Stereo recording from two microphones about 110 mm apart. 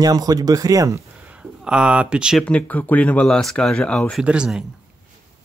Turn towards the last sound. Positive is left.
turn(degrees=-10)  # may be behind; listen again after turning